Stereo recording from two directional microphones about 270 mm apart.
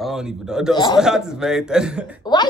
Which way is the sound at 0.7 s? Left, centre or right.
Centre.